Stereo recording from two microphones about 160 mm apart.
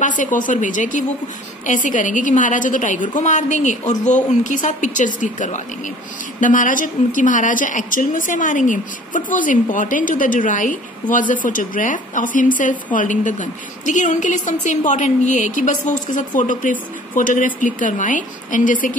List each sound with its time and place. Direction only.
0.0 s a woman's voice: 55° left (ahead or behind)